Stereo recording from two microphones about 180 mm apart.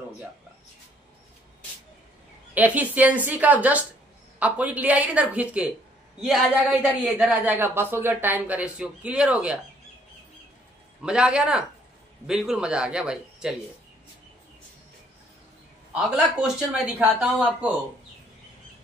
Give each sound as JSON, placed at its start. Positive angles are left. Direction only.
{"t": 2.5, "sound": "speech", "side_deg": -10}
{"t": 11.0, "sound": "a man's voice", "side_deg": -5}
{"t": 15.9, "sound": "a man's voice", "side_deg": -5}